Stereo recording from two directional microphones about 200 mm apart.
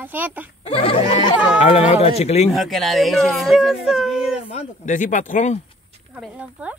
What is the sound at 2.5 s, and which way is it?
Speech, centre (ahead or behind).